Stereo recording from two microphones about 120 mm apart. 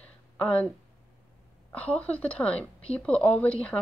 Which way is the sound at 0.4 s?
10° left (ahead or behind).